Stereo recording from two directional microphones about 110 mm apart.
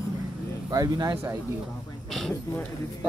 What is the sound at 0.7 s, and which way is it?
Speech, 35° right (ahead or behind).